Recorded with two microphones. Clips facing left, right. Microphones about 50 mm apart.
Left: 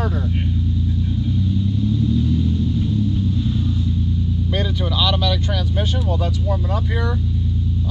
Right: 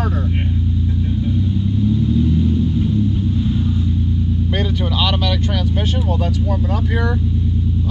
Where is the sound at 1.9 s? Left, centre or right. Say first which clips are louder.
Right 2 dB; right.